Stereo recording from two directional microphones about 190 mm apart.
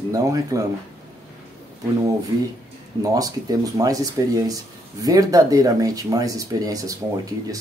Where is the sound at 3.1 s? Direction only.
20° right (ahead or behind).